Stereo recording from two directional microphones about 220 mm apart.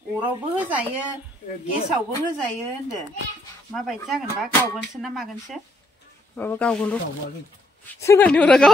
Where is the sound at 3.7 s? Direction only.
Centre (ahead or behind).